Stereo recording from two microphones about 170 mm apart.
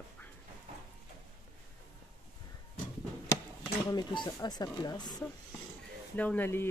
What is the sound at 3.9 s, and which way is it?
Speech, 25° left (ahead or behind).